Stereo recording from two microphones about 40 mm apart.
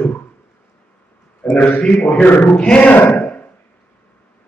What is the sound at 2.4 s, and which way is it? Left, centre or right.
Chant, left.